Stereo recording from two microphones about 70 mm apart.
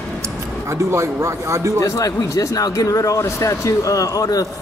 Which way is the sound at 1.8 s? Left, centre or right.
Left.